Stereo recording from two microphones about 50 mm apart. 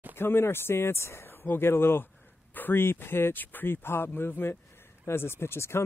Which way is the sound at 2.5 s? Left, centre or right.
Left.